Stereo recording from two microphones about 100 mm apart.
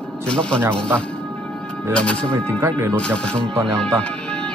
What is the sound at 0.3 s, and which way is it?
Speech, 10° left (ahead or behind).